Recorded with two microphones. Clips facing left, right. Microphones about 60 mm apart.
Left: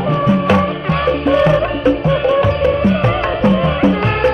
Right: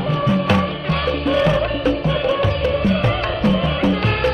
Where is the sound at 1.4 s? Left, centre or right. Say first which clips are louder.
Left 5 dB; left.